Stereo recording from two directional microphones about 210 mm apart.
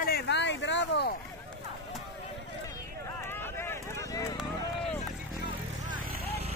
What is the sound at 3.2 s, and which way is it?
Run, 10° left (ahead or behind).